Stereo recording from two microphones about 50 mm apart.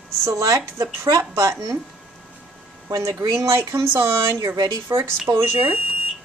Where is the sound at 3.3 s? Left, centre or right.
Right.